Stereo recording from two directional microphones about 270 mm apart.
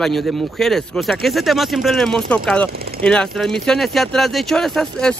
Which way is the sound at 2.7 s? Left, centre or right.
Right.